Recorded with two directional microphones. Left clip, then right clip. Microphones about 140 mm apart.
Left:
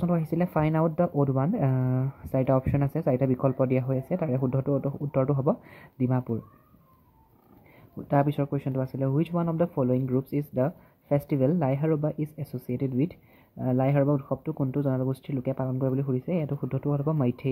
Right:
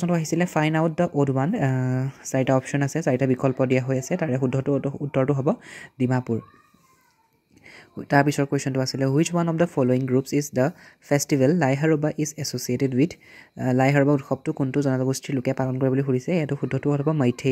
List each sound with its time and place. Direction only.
0.0 s speech: 20° right (ahead or behind)
8.1 s speech: 35° right (ahead or behind)